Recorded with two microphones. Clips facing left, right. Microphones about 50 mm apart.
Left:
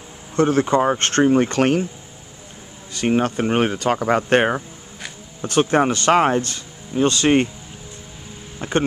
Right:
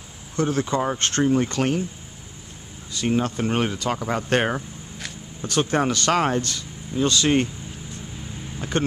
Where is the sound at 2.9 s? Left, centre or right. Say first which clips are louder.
Left 4 dB; left.